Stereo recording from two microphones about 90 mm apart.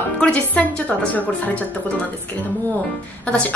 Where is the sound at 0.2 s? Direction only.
15° left (ahead or behind).